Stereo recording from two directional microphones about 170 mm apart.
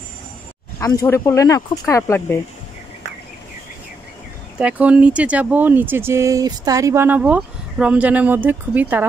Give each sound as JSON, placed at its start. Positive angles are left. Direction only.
{"t": 0.7, "sound": "speech", "side_deg": 15}
{"t": 4.6, "sound": "speech", "side_deg": -10}